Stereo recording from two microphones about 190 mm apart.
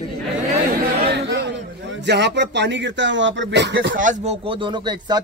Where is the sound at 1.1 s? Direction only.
65° right (ahead or behind).